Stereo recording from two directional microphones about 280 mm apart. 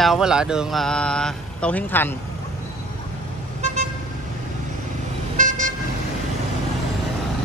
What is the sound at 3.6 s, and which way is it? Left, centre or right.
Vehicle, right.